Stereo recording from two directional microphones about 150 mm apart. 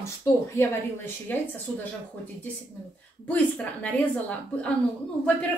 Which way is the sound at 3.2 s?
10° left (ahead or behind).